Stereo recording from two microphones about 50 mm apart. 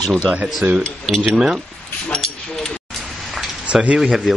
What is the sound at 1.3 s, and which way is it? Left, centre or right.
Speech, centre.